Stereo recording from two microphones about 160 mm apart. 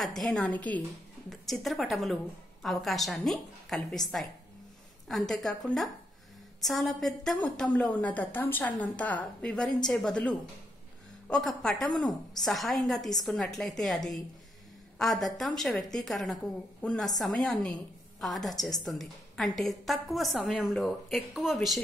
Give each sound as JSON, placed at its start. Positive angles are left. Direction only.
{"t": 0.0, "sound": "a woman's voice", "side_deg": 0}
{"t": 5.0, "sound": "a woman's voice", "side_deg": 0}